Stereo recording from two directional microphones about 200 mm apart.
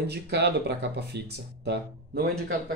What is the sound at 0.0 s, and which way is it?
Speech, 55° right (ahead or behind).